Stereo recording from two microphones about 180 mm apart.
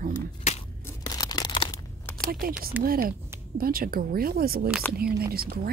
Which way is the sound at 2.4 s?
55° right (ahead or behind).